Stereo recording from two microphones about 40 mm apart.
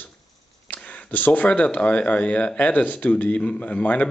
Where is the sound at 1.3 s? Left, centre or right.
Left.